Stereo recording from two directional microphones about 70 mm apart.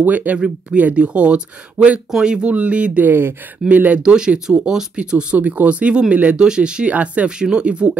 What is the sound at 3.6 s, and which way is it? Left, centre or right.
Speech, right.